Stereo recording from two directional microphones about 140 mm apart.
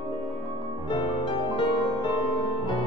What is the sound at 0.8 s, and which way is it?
Music, 35° left (ahead or behind).